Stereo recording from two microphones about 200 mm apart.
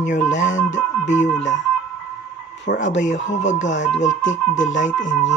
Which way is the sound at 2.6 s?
65° left (ahead or behind).